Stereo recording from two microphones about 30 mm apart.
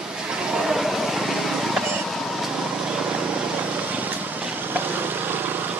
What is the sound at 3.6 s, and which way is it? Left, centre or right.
Vehicle, right.